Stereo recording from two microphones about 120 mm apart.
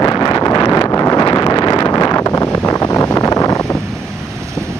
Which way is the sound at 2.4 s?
20° left (ahead or behind).